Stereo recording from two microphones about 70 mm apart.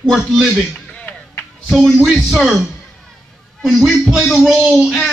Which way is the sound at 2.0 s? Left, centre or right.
Centre.